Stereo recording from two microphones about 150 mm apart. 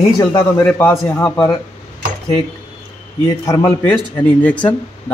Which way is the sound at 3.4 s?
15° left (ahead or behind).